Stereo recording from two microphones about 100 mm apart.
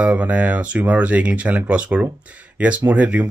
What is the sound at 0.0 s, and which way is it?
Speech, 15° right (ahead or behind).